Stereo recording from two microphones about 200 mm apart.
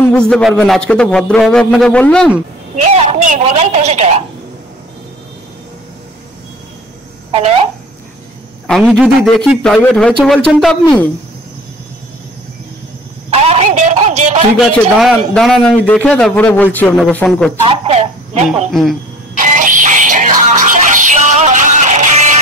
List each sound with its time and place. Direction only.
0.3 s a man's voice: centre (ahead or behind)
2.7 s speech: 35° right (ahead or behind)
8.6 s a man's voice: centre (ahead or behind)
13.3 s speech: 30° right (ahead or behind)
14.7 s a man's voice: centre (ahead or behind)
17.6 s speech: 30° right (ahead or behind)
18.7 s a man's voice: centre (ahead or behind)
19.3 s music: 40° right (ahead or behind)